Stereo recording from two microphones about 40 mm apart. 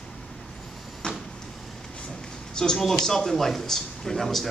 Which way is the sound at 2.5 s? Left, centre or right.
Centre.